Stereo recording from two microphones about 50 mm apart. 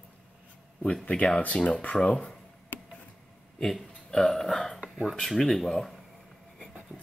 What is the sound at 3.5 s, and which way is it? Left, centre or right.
Speech, centre.